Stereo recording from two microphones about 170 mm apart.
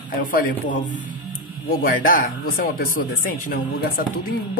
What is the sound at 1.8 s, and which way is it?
Speech, 55° left (ahead or behind).